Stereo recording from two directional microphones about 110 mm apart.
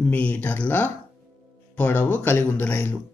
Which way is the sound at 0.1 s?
15° left (ahead or behind).